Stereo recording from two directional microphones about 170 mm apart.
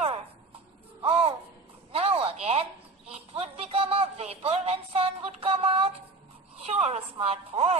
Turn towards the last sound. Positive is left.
turn(degrees=-35)  # may be behind; listen again after turning